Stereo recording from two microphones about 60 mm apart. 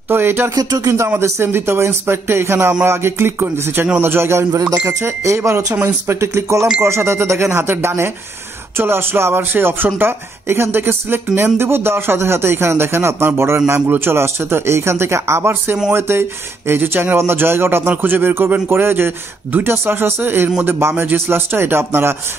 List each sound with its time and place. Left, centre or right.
0.1 s speech: right
0.6 s speech: right
1.0 s speech: right
4.6 s speech: right
5.0 s speech: right
6.0 s speech: right